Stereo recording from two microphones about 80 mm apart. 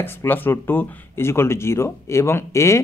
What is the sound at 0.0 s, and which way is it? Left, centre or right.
Speech, left.